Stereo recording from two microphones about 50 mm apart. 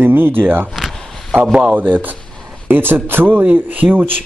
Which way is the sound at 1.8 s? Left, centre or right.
Right.